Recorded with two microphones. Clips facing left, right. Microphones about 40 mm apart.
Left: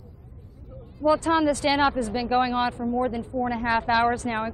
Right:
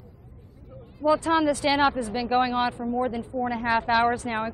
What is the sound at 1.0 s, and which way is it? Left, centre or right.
A woman's voice, centre.